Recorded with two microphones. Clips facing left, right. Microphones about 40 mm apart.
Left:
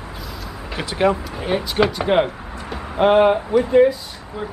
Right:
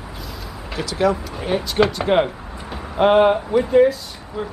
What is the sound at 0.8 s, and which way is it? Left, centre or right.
Speech, left.